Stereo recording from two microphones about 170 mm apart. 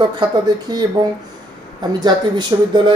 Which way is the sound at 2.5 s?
25° right (ahead or behind).